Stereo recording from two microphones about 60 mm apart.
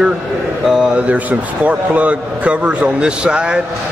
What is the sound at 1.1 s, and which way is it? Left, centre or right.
A man's voice, right.